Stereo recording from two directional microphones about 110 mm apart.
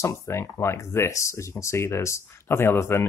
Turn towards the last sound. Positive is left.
turn(degrees=25)  # may be behind; listen again after turning